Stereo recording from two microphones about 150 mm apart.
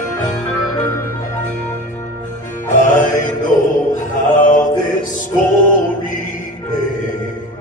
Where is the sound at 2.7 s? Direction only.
60° left (ahead or behind).